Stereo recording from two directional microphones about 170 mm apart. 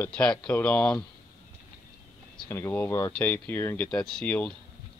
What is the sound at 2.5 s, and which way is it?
Speech, 15° left (ahead or behind).